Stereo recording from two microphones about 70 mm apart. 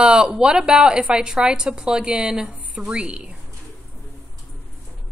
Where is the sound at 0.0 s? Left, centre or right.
Centre.